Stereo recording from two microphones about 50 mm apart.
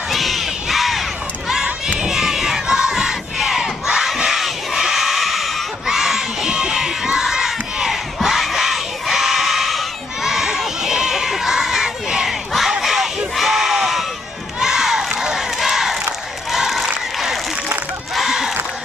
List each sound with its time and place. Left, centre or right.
0.1 s crowd: centre
2.0 s battle cry: centre
12.8 s crowd: centre
13.4 s a sound: centre
14.6 s crowd: centre
18.1 s a sound: centre